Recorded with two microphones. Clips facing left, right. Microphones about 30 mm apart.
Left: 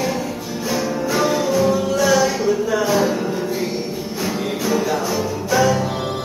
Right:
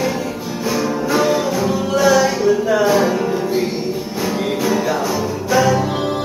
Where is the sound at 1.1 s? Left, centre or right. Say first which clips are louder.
Right 1 dB; centre.